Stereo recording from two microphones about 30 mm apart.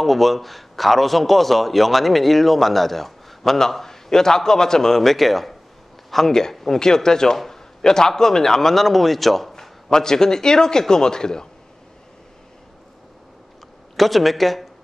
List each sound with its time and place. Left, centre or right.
0.0 s a man's voice: centre
7.3 s a sound: centre
8.2 s speech: centre
9.6 s a man's voice: centre
13.9 s a man's voice: centre